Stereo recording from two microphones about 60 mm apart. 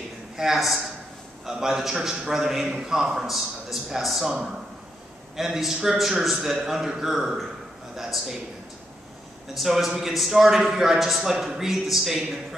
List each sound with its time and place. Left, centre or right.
0.4 s a man's voice: centre
5.3 s a man's voice: centre
9.5 s a man's voice: centre